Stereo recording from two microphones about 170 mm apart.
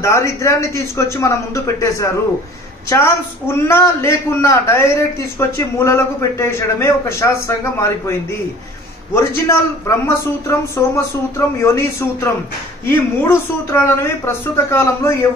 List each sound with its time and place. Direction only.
0.0 s a man's voice: 15° left (ahead or behind)